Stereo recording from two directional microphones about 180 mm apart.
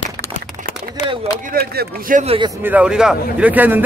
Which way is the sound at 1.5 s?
55° right (ahead or behind).